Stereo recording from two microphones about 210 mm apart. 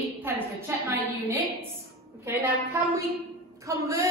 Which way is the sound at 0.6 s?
10° right (ahead or behind).